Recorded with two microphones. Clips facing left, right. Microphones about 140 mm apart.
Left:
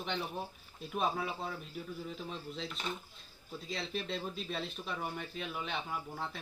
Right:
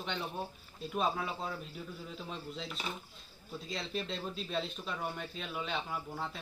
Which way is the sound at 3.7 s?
Centre (ahead or behind).